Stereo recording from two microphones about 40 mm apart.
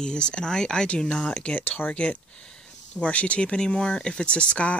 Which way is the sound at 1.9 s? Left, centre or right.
Left.